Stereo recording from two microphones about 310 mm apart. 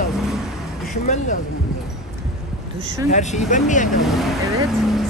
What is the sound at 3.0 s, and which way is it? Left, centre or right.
Speech, left.